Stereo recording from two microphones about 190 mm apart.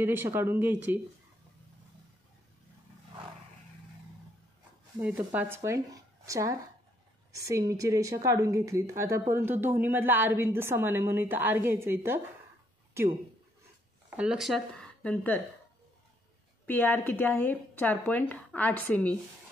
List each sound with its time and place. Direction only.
0.0 s a woman's voice: 10° right (ahead or behind)
5.0 s a woman's voice: 10° right (ahead or behind)
14.1 s speech: 5° right (ahead or behind)
16.6 s speech: 10° left (ahead or behind)